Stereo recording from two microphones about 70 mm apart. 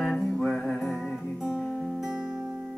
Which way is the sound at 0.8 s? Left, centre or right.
Centre.